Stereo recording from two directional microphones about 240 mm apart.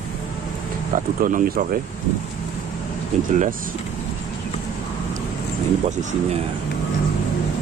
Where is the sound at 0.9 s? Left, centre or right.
Right.